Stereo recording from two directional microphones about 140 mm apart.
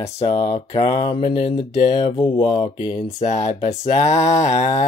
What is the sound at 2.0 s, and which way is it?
Mantra, 35° left (ahead or behind).